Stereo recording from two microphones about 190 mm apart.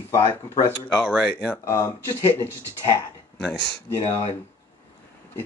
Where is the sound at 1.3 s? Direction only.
10° left (ahead or behind).